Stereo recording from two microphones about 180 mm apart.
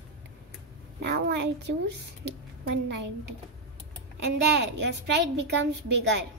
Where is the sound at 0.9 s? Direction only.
70° right (ahead or behind).